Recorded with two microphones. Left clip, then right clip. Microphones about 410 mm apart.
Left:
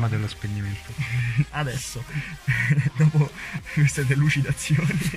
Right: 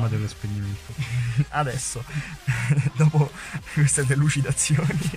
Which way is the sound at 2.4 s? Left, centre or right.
Right.